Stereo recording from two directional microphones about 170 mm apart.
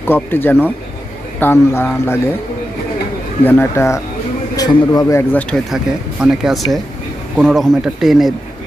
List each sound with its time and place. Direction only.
0.0 s speech: 10° left (ahead or behind)
3.4 s a man's voice: 15° left (ahead or behind)
5.3 s speech: centre (ahead or behind)